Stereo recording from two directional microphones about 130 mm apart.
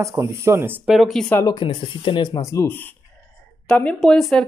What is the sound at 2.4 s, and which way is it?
Speech, 20° left (ahead or behind).